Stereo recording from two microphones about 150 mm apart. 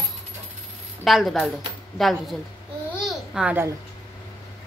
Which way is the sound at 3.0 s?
5° right (ahead or behind).